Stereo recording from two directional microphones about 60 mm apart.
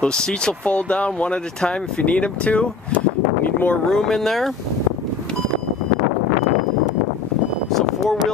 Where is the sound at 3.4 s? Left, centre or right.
Left.